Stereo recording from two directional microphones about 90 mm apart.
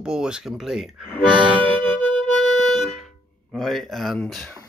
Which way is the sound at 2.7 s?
Centre (ahead or behind).